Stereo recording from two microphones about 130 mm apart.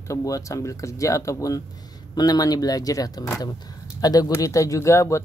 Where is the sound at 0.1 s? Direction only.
25° left (ahead or behind).